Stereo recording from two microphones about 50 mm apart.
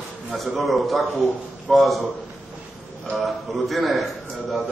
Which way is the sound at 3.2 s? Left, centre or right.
Centre.